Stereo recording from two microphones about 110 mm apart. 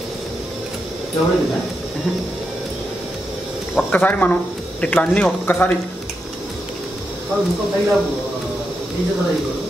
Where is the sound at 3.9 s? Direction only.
15° left (ahead or behind).